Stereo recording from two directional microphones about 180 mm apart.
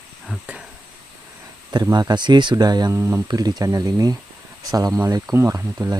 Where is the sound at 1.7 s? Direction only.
20° right (ahead or behind).